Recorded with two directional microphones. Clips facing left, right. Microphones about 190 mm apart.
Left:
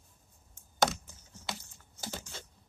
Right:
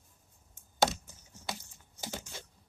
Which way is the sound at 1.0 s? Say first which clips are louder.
Right 1 dB; 15° right (ahead or behind).